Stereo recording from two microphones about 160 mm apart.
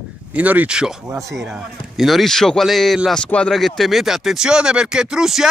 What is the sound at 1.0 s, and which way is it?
Speech, 20° right (ahead or behind).